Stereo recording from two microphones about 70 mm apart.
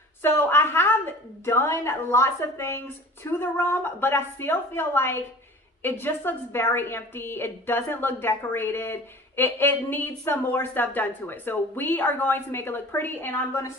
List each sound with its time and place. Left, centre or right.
0.2 s a woman's voice: left